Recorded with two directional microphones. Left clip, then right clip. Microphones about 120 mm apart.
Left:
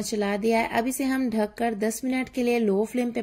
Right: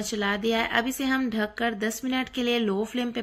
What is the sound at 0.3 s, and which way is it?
A woman's voice, 25° left (ahead or behind).